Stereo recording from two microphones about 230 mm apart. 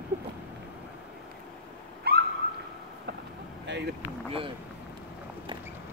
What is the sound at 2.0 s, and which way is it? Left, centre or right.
Owl, right.